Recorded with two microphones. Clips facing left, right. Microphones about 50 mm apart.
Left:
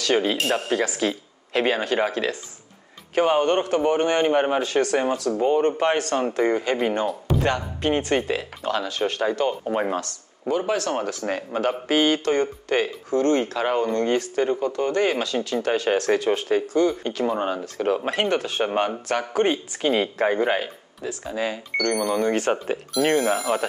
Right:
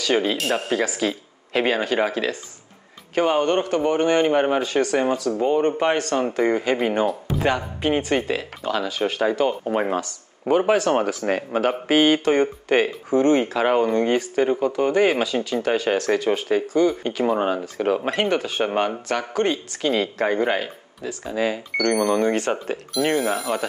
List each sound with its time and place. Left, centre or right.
0.0 s speech: centre
10.5 s speech: right
11.1 s speech: centre